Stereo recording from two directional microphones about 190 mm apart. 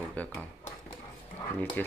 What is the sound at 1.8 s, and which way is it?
Speech, 10° left (ahead or behind).